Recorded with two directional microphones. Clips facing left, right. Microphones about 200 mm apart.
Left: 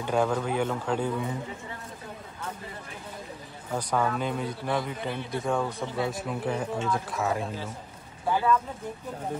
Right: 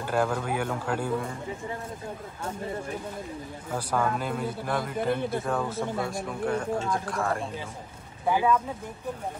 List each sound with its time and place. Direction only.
0.0 s speech: 5° right (ahead or behind)
3.7 s a man's voice: 5° right (ahead or behind)
8.3 s speech: 10° right (ahead or behind)